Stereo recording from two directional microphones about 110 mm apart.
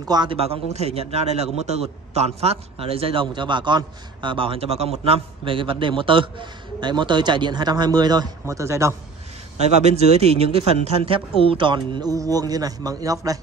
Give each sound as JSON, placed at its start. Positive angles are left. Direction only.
{"t": 0.0, "sound": "a man's voice", "side_deg": -40}
{"t": 0.3, "sound": "a man's voice", "side_deg": -65}
{"t": 9.8, "sound": "a man's voice", "side_deg": -75}